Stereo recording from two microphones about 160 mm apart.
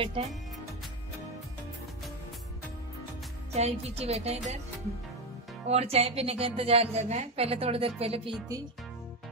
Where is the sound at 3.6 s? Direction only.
40° right (ahead or behind).